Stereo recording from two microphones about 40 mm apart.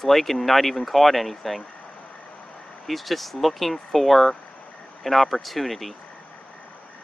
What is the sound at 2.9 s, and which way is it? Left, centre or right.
Speech, centre.